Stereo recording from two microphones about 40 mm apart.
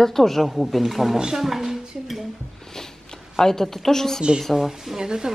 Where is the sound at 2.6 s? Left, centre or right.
Centre.